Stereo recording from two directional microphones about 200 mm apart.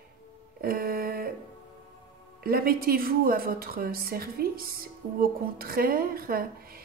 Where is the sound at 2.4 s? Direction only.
50° right (ahead or behind).